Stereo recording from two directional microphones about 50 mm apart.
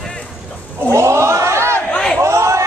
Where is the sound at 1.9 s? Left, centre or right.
Centre.